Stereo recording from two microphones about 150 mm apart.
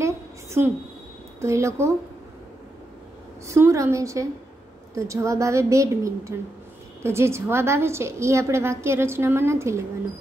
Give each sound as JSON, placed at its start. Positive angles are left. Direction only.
{"t": 0.0, "sound": "a sound", "side_deg": -20}
{"t": 1.4, "sound": "a woman's voice", "side_deg": -20}
{"t": 3.4, "sound": "a woman's voice", "side_deg": -20}